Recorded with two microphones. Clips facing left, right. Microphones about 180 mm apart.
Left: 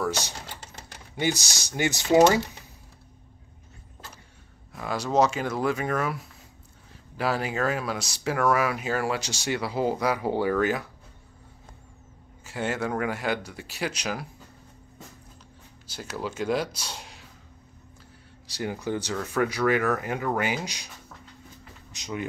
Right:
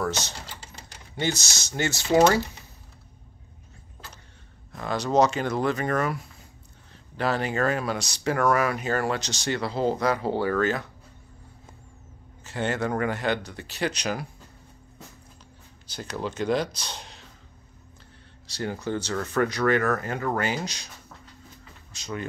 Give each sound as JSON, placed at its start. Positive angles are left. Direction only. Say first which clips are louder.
{"t": 0.0, "sound": "speech", "louder": "even", "side_deg": 10}
{"t": 4.7, "sound": "speech", "louder": "right 1 dB", "side_deg": 5}
{"t": 12.4, "sound": "speech", "louder": "right 2 dB", "side_deg": 5}
{"t": 15.9, "sound": "speech", "louder": "right 1 dB", "side_deg": 5}
{"t": 18.5, "sound": "speech", "louder": "even", "side_deg": 10}
{"t": 21.9, "sound": "speech", "louder": "even", "side_deg": 15}